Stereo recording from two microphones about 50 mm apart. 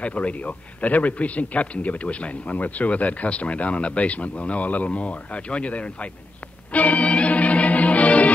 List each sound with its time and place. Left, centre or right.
0.0 s speech: left
6.7 s music: left